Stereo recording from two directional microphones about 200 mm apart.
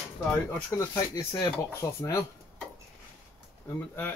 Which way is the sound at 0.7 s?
15° left (ahead or behind).